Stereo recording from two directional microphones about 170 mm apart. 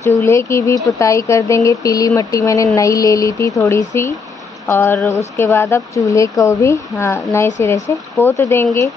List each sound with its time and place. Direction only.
0.0 s speech: 15° left (ahead or behind)